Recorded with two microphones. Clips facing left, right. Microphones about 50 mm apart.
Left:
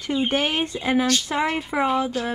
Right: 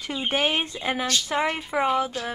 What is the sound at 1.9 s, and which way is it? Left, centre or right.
Speech, left.